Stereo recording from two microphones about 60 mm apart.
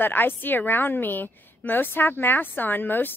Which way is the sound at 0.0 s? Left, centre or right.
Left.